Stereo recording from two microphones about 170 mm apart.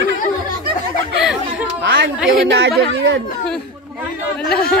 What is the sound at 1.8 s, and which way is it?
Speech, 90° right.